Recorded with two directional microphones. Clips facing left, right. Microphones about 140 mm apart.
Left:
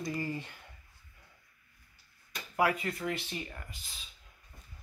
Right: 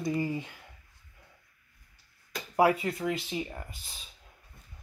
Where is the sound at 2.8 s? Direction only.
20° right (ahead or behind).